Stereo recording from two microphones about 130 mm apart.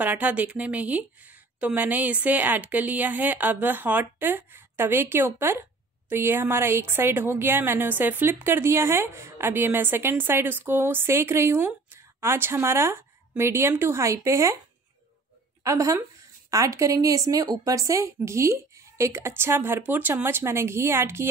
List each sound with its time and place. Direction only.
0.0 s speech: 10° right (ahead or behind)
15.6 s speech: 25° right (ahead or behind)